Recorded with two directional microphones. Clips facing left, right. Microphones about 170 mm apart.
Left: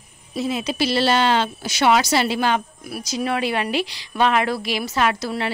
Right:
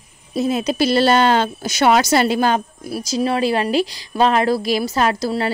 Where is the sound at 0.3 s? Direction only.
45° right (ahead or behind).